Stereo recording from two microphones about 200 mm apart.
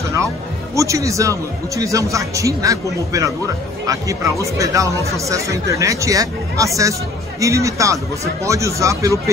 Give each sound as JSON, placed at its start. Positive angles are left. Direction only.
{"t": 0.7, "sound": "speech", "side_deg": -15}